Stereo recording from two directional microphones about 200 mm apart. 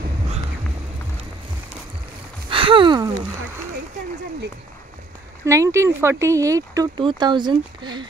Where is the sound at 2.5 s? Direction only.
25° right (ahead or behind).